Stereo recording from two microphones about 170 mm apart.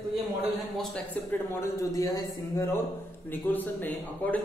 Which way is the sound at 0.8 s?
5° left (ahead or behind).